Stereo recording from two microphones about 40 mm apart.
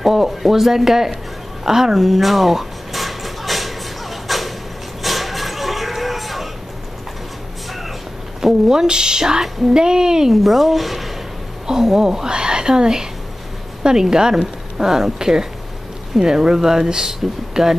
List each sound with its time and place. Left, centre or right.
0.0 s a woman's voice: centre
1.6 s a sound: centre
8.4 s a woman's voice: centre
10.3 s speech: centre
11.6 s a woman's voice: centre
14.1 s a woman's voice: centre